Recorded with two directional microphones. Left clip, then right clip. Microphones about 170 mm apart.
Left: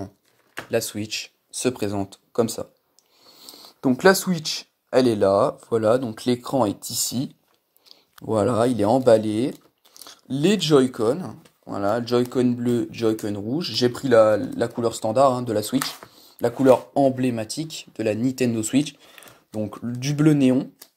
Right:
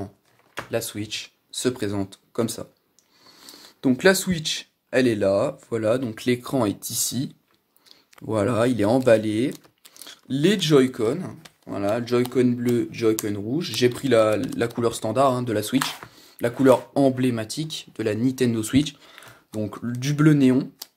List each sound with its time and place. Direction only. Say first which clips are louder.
0.7 s speech: left 3 dB; 20° left (ahead or behind)
3.3 s speech: left 1 dB; centre (ahead or behind)